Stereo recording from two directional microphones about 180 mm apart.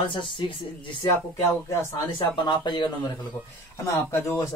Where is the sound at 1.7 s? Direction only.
15° left (ahead or behind).